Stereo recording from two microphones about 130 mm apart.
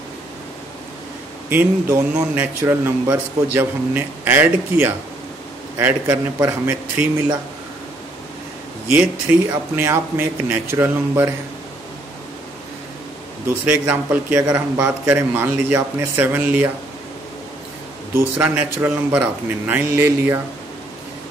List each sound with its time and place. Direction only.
1.5 s a man's voice: 10° right (ahead or behind)
8.8 s a man's voice: 10° right (ahead or behind)
13.5 s a man's voice: 15° right (ahead or behind)
18.1 s a man's voice: 10° right (ahead or behind)